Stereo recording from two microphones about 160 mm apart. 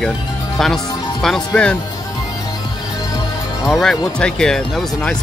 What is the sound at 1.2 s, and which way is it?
Speech, 5° left (ahead or behind).